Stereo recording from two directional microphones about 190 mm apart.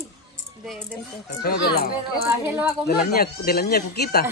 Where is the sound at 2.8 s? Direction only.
55° left (ahead or behind).